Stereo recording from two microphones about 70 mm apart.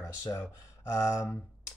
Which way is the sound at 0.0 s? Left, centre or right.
Left.